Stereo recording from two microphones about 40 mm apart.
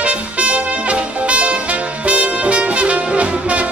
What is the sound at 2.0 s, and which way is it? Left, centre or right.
Music, right.